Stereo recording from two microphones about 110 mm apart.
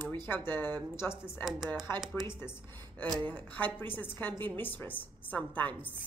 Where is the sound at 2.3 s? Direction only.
20° left (ahead or behind).